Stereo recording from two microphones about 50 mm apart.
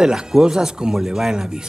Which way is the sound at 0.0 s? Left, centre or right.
Centre.